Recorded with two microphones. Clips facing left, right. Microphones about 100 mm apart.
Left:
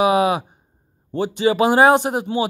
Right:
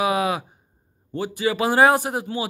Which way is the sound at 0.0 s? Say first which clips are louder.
Left 5 dB; 20° left (ahead or behind).